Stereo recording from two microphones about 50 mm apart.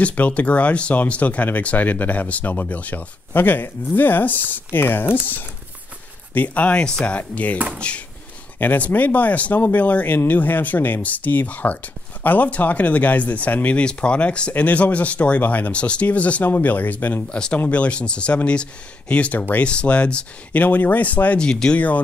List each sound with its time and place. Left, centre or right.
0.1 s speech: left
6.3 s speech: left
7.5 s speech: right
8.5 s speech: left
13.7 s speech: left
16.4 s speech: left
17.3 s speech: left
20.5 s speech: left
21.4 s speech: centre
21.7 s speech: left